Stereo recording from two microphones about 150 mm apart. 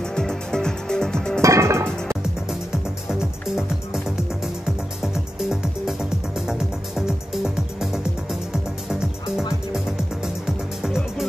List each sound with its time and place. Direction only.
0.0 s music: 5° left (ahead or behind)
1.4 s music: 20° right (ahead or behind)
3.1 s music: 5° right (ahead or behind)
9.8 s music: 5° right (ahead or behind)